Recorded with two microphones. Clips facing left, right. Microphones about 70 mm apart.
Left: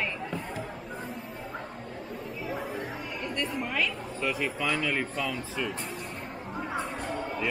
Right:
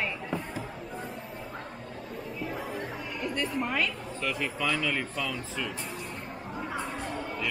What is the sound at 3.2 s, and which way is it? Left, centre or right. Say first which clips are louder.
A woman's voice: right 2 dB; centre.